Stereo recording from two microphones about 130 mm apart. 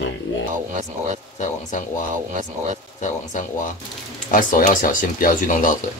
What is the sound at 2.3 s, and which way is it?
Speech, 70° right (ahead or behind).